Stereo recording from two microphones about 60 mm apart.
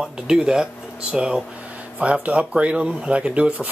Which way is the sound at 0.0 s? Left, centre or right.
Centre.